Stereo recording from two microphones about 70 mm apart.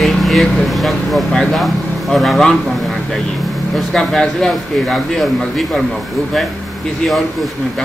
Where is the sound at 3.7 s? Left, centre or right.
Centre.